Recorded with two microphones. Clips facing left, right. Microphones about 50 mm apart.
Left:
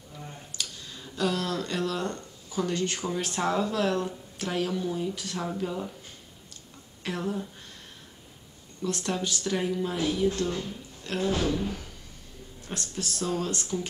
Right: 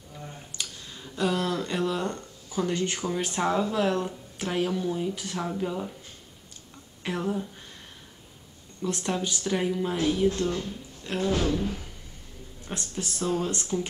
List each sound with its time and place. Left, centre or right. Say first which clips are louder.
0.5 s a sound: even; centre
3.1 s speech: right 2 dB; centre
5.6 s speech: right 1 dB; centre
7.0 s a sound: right 2 dB; centre
8.8 s speech: right 1 dB; centre
12.6 s speech: right 1 dB; centre